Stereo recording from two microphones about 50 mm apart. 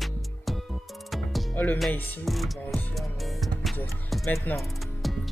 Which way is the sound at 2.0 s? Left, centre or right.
Left.